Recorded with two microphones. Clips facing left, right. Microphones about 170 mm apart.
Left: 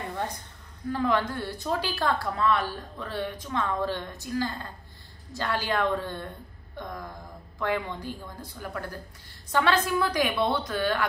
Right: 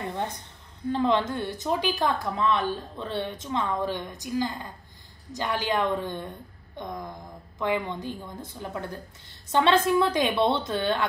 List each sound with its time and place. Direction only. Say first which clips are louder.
0.8 s a woman's voice: right 2 dB; 25° right (ahead or behind)